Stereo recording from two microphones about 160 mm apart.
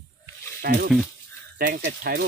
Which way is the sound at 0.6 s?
70° right (ahead or behind).